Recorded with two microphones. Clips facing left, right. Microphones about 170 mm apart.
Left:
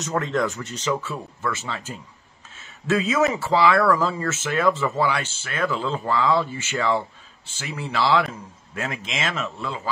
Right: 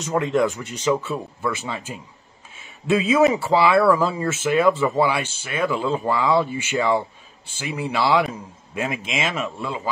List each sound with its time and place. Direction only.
0.0 s speech: 10° right (ahead or behind)
2.5 s a sound: 15° right (ahead or behind)
3.3 s speech: 15° right (ahead or behind)
4.0 s speech: 10° right (ahead or behind)